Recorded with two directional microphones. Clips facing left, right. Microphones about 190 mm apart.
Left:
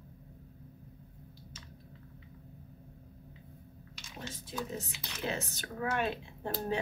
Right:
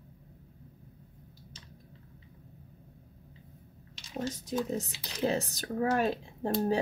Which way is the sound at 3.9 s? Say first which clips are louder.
Right 10 dB; 40° right (ahead or behind).